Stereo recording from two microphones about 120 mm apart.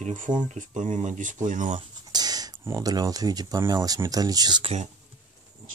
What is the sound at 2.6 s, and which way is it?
Speech, 30° right (ahead or behind).